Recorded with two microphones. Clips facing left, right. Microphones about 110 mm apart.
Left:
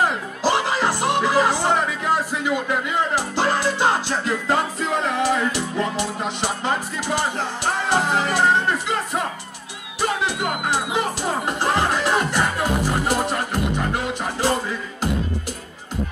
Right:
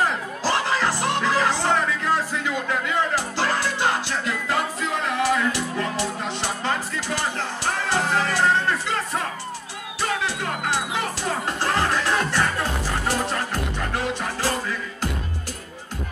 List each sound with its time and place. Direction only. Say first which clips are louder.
0.0 s music: left 3 dB; 15° left (ahead or behind)
7.9 s music: left 2 dB; 15° left (ahead or behind)